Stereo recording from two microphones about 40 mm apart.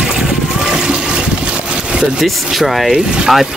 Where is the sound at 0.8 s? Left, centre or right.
Right.